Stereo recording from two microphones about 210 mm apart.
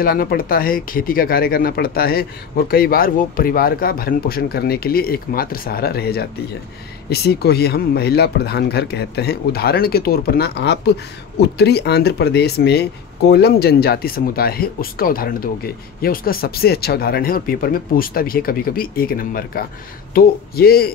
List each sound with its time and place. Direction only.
0.0 s speech: 45° left (ahead or behind)